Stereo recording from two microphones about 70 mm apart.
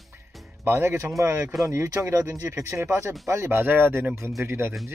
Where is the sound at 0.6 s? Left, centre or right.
Right.